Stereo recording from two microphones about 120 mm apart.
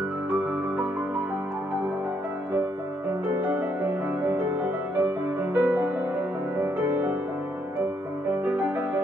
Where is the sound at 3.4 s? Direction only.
15° right (ahead or behind).